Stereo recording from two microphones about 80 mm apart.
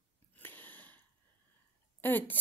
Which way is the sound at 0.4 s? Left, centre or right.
Left.